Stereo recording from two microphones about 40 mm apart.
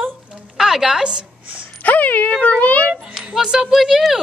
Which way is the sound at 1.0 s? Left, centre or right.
Right.